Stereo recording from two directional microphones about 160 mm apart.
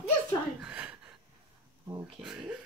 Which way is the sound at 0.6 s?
10° right (ahead or behind).